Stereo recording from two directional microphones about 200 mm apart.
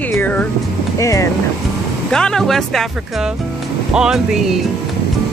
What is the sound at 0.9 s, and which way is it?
Speech, 15° left (ahead or behind).